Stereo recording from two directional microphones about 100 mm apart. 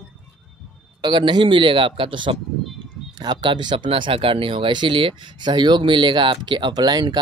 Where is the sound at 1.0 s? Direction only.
50° right (ahead or behind).